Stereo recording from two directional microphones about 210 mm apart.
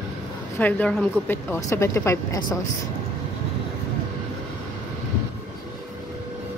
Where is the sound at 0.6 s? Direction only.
10° left (ahead or behind).